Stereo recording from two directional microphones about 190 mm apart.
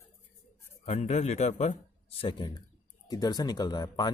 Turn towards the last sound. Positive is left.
turn(degrees=20)  # may be behind; listen again after turning